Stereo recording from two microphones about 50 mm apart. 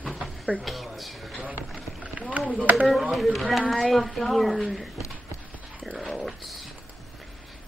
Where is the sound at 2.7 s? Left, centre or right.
Centre.